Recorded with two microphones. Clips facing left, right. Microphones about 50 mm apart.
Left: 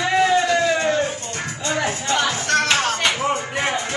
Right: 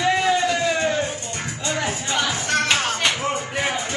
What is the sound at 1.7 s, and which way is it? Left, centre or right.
Music, centre.